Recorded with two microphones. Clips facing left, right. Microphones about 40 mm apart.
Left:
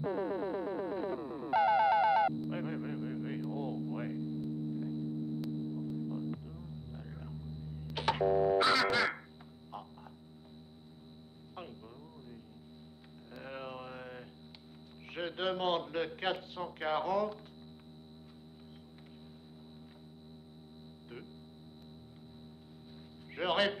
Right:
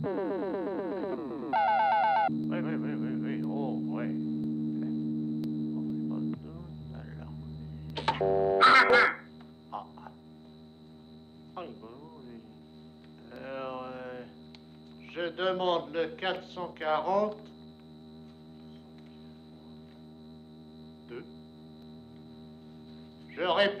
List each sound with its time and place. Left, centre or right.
0.0 s synthesizer: centre
3.3 s a sound: centre
4.2 s mains hum: centre
5.9 s music: centre
7.8 s busy signal: centre
8.5 s music: right
8.8 s music: right
13.3 s mantra: centre
15.1 s a sound: centre
16.2 s speech: centre
23.3 s a sound: centre